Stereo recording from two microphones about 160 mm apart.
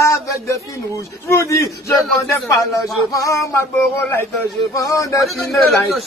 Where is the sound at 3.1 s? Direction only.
20° left (ahead or behind).